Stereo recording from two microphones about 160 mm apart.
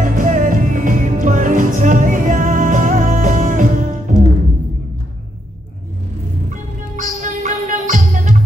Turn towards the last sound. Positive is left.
turn(degrees=-50)  # may be behind; listen again after turning